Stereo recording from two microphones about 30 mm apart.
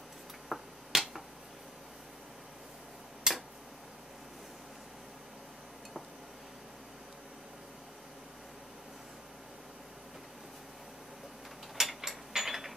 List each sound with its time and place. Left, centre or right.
0.5 s finger snapping: centre
3.3 s tick-tock: right
11.7 s mechanisms: centre
12.3 s ratchet: centre